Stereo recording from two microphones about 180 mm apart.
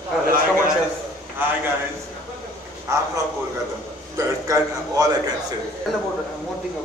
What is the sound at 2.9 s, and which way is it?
Speech, 15° right (ahead or behind).